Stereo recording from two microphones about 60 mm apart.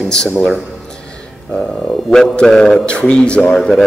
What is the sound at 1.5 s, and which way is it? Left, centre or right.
A man's voice, centre.